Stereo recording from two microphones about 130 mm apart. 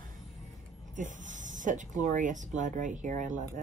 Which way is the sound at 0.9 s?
75° right (ahead or behind).